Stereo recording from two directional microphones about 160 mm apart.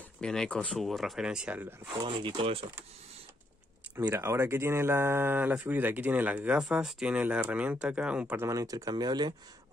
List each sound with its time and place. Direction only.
0.2 s speech: 5° left (ahead or behind)
2.0 s speech: 35° right (ahead or behind)
4.0 s speech: 15° right (ahead or behind)
8.5 s speech: 20° right (ahead or behind)